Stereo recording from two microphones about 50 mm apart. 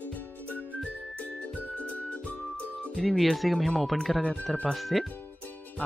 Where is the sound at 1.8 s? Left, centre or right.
Left.